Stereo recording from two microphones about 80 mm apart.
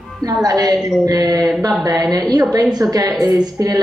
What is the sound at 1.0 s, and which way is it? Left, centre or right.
Speech, right.